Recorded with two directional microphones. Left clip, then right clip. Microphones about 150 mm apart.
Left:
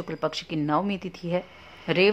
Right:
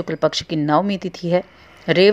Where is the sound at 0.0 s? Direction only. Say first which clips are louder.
Right 9 dB; 30° right (ahead or behind).